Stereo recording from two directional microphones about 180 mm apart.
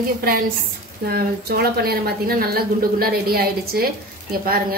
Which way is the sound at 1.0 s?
60° right (ahead or behind).